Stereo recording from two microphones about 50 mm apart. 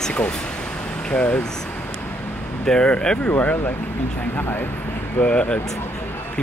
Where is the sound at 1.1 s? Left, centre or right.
Left.